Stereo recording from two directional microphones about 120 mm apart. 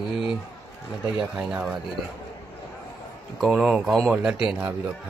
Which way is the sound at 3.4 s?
5° right (ahead or behind).